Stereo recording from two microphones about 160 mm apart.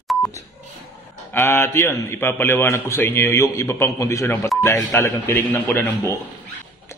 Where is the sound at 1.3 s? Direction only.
15° left (ahead or behind).